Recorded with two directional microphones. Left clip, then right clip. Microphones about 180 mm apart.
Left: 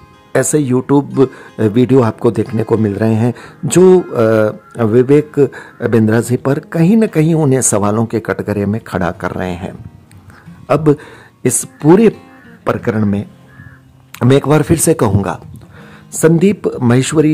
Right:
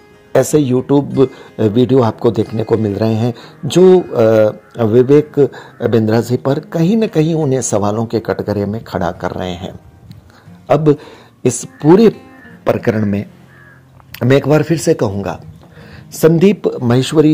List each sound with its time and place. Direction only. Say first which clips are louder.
0.3 s speech: right 1 dB; 10° left (ahead or behind)
12.6 s speech: right 2 dB; centre (ahead or behind)
14.1 s speech: even; 15° left (ahead or behind)
16.2 s speech: right 1 dB; 5° left (ahead or behind)